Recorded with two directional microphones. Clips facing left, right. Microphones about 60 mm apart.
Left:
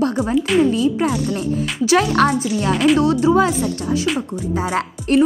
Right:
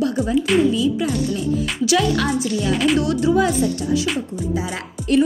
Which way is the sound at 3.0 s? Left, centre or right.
Left.